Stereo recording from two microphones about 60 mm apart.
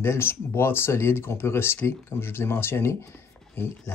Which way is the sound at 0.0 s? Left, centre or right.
Left.